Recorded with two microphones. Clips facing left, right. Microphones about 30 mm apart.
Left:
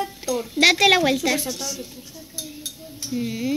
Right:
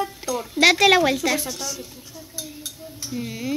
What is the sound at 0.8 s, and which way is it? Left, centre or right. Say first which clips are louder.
Speech: right 1 dB; centre.